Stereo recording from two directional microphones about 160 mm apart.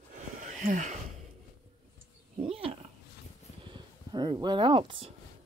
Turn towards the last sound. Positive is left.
turn(degrees=-35)  # may be behind; listen again after turning